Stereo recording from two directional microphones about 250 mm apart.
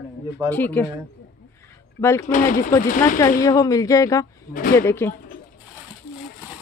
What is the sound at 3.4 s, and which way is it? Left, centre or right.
Speech, centre.